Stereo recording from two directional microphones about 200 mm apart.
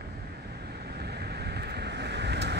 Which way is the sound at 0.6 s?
55° right (ahead or behind).